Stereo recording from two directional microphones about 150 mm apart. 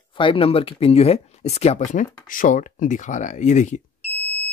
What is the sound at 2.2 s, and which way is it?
Speech, 65° left (ahead or behind).